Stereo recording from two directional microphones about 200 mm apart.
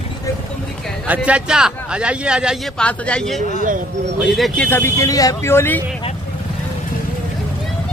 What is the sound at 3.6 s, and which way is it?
Speech, 40° right (ahead or behind).